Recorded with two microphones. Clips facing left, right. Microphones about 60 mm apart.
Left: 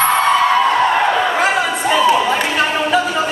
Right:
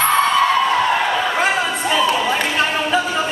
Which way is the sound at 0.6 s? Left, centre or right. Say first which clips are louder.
Left 3 dB; centre.